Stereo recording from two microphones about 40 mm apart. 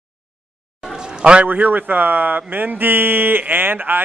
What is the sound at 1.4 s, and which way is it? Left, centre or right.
A man's voice, right.